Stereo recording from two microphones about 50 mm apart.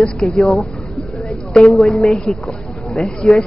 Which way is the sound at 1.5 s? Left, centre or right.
Centre.